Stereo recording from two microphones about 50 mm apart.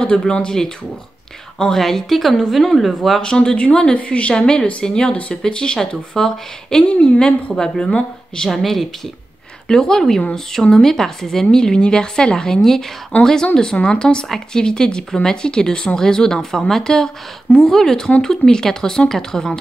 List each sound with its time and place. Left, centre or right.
0.2 s speech: centre
3.2 s a woman's voice: centre
6.9 s a woman's voice: left
8.5 s speech: centre